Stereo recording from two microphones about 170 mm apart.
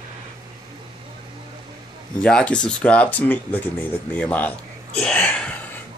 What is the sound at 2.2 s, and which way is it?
Speech, 5° left (ahead or behind).